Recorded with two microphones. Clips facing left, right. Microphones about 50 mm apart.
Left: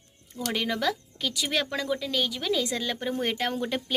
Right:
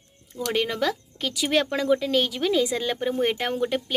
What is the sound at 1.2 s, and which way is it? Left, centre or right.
Speech, right.